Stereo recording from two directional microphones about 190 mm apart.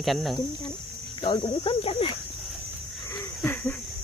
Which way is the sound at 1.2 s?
25° left (ahead or behind).